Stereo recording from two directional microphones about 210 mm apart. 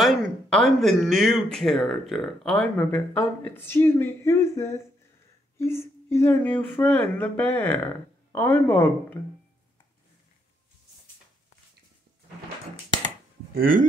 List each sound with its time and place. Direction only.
0.0 s speech: centre (ahead or behind)
13.6 s speech: 40° right (ahead or behind)